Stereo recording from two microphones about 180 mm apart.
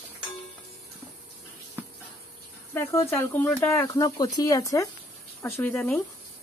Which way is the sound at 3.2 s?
15° left (ahead or behind).